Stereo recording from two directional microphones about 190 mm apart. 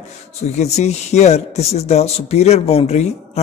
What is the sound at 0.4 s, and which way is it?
Speech, 35° left (ahead or behind).